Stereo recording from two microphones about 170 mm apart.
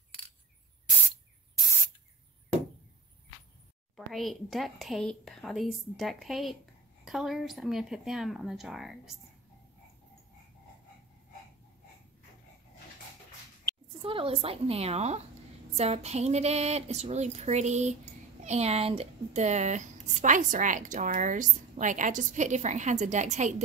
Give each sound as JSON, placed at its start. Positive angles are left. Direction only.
{"t": 3.9, "sound": "speech", "side_deg": 0}
{"t": 14.0, "sound": "speech", "side_deg": -35}